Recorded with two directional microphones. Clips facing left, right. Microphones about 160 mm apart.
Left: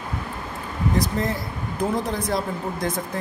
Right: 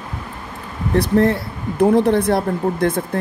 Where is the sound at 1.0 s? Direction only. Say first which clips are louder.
Right 12 dB; 65° right (ahead or behind).